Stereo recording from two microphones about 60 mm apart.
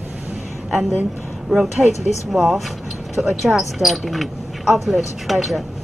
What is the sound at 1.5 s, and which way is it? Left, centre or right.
Speech, centre.